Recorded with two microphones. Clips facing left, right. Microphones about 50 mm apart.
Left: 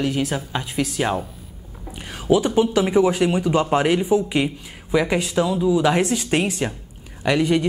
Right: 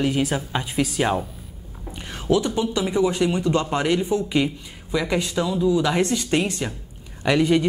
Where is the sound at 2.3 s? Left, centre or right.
Left.